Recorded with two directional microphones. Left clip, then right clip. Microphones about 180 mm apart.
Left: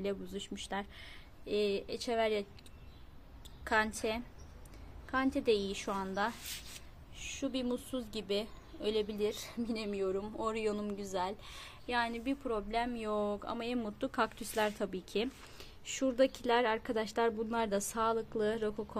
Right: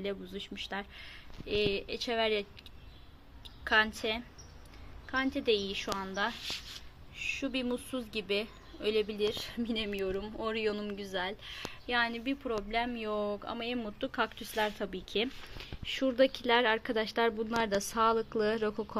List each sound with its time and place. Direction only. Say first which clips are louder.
0.0 s a woman's voice: right 1 dB; 20° left (ahead or behind)
3.6 s a woman's voice: right 4 dB; 15° left (ahead or behind)
6.3 s a woman's voice: right 6 dB; centre (ahead or behind)
15.1 s a woman's voice: right 4 dB; centre (ahead or behind)